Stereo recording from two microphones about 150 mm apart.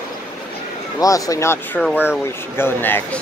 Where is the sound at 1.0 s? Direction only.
25° left (ahead or behind).